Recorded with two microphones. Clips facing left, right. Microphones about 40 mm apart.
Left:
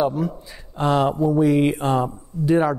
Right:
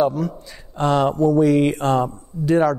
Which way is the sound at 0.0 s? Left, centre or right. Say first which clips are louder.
Right 2 dB; centre.